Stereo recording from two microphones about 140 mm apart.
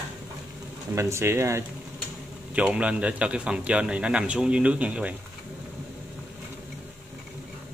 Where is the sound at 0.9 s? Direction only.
20° right (ahead or behind).